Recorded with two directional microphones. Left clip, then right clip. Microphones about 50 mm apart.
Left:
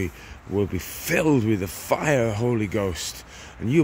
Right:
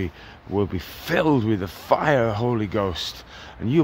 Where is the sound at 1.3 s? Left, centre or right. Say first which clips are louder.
Even; left.